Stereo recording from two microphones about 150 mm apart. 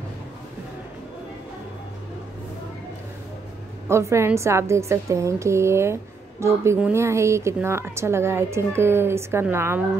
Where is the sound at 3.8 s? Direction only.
20° right (ahead or behind).